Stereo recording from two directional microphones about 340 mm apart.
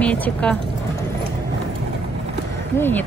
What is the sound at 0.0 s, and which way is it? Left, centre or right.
Speech, centre.